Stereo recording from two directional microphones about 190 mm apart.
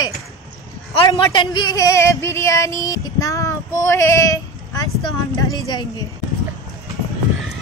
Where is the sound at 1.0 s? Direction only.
25° left (ahead or behind).